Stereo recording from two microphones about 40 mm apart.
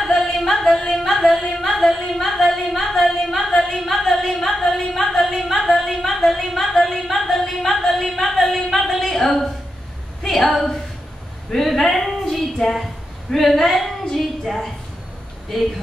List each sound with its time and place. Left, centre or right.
0.0 s music: centre
0.7 s singing: centre
1.0 s singing: centre
4.9 s a sound: centre
13.4 s speech: centre
14.2 s a sound: centre